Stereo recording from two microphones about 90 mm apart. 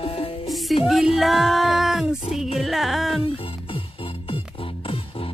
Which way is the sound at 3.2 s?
90° left.